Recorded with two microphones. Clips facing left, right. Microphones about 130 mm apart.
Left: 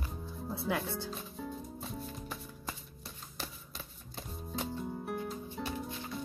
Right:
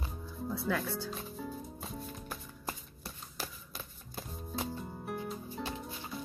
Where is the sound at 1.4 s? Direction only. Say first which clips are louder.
Even; centre (ahead or behind).